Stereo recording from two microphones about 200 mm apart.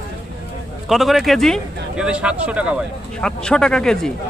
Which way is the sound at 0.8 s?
Centre (ahead or behind).